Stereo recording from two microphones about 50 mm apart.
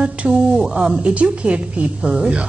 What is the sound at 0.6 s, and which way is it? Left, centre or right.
Speech, centre.